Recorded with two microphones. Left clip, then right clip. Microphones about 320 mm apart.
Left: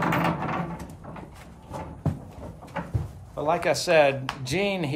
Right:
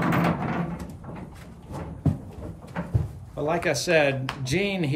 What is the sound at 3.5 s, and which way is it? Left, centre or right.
Speech, centre.